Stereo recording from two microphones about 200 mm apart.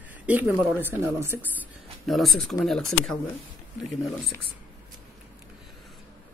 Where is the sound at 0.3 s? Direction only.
10° right (ahead or behind).